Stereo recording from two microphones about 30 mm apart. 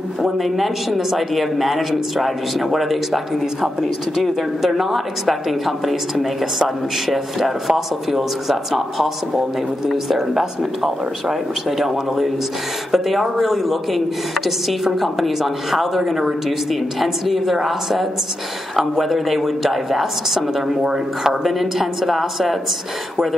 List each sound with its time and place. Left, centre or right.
0.4 s speech: centre